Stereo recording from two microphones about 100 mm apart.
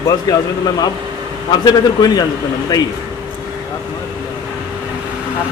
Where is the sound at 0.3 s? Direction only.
40° left (ahead or behind).